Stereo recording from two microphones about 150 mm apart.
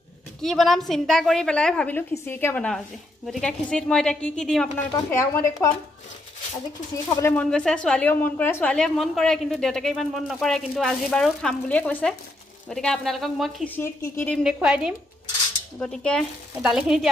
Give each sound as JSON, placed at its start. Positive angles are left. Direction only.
{"t": 0.4, "sound": "a woman's voice", "side_deg": 5}
{"t": 4.9, "sound": "speech", "side_deg": 20}
{"t": 7.1, "sound": "speech", "side_deg": 20}
{"t": 7.5, "sound": "a woman's voice", "side_deg": 5}
{"t": 13.7, "sound": "speech", "side_deg": 15}
{"t": 14.3, "sound": "a woman's voice", "side_deg": -5}
{"t": 15.8, "sound": "a woman's voice", "side_deg": 5}